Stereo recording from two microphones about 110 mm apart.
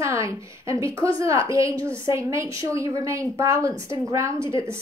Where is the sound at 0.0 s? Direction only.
25° right (ahead or behind).